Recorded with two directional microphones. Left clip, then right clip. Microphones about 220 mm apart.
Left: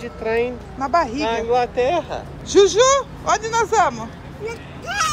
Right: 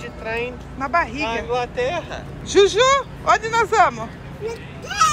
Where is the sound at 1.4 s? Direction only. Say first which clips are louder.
Left 4 dB; 40° left (ahead or behind).